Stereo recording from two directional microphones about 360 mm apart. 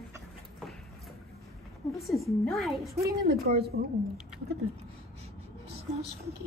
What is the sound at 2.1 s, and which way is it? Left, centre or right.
Speech, centre.